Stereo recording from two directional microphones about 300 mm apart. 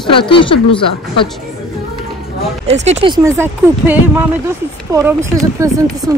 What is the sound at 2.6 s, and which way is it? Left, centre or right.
Speech, right.